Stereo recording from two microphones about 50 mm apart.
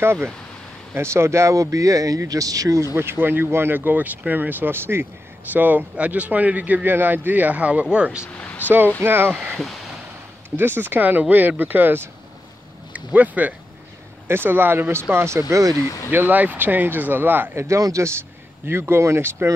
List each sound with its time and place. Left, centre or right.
0.0 s speech: right
2.9 s speech: right
5.5 s a man's voice: right
9.0 s speech: right
9.5 s speech: centre
10.5 s a man's voice: right
12.9 s speech: right
14.2 s speech: right
16.1 s a man's voice: right
17.6 s speech: right
18.7 s speech: right